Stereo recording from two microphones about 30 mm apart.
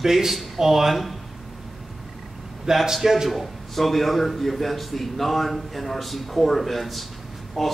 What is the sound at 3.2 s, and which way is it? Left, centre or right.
A man's voice, centre.